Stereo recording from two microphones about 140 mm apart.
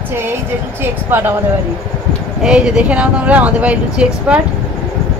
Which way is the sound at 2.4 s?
5° right (ahead or behind).